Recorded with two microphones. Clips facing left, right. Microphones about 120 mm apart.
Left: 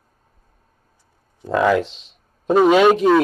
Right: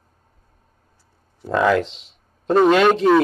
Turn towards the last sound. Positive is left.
turn(degrees=10)  # may be behind; listen again after turning